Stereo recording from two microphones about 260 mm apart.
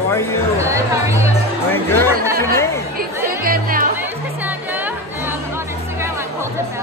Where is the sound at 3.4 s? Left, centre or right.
Right.